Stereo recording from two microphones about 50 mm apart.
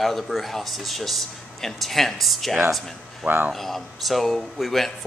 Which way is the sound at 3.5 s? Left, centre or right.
Centre.